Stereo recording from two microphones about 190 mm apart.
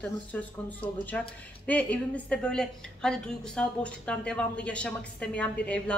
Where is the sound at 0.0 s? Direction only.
10° left (ahead or behind).